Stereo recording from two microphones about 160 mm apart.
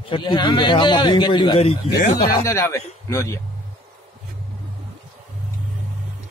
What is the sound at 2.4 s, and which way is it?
Speech, 20° left (ahead or behind).